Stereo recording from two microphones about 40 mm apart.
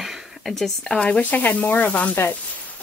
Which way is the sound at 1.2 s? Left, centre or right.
Left.